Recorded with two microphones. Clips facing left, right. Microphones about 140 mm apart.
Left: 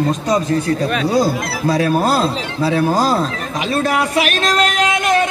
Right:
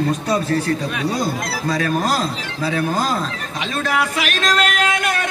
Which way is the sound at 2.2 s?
30° left (ahead or behind).